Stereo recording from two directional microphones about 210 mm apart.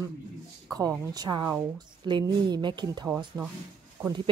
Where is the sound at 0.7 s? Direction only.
20° right (ahead or behind).